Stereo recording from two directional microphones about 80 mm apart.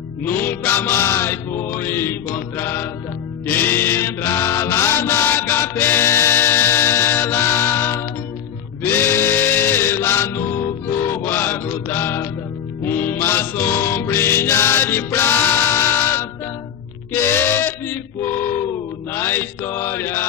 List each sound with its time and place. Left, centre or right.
0.2 s music: left
3.4 s chant: left
8.8 s music: left
17.1 s a sound: left
19.1 s mantra: left